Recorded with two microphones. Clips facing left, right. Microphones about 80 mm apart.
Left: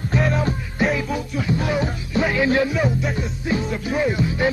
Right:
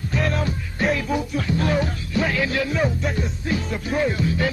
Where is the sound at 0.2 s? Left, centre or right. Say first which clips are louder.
Left 1 dB; centre.